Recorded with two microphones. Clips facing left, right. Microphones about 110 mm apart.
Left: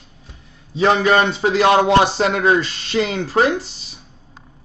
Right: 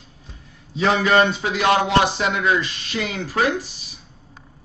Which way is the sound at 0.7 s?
35° left (ahead or behind).